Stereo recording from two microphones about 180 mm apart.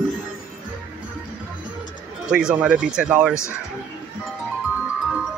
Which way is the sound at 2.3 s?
5° right (ahead or behind).